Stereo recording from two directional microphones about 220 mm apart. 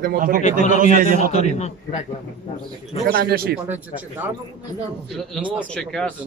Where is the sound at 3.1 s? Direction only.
45° right (ahead or behind).